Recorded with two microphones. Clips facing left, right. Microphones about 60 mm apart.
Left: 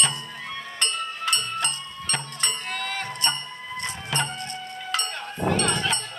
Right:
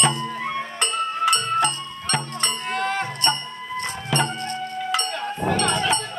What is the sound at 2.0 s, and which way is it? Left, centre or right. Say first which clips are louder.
Music: right 5 dB; centre.